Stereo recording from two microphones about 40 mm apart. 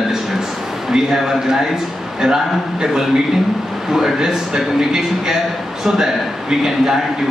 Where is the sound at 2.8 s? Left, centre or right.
Centre.